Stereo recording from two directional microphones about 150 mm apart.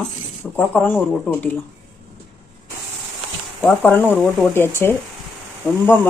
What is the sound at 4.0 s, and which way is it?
Speech, centre (ahead or behind).